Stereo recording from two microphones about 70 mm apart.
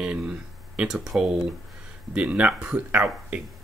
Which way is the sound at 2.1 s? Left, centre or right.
Centre.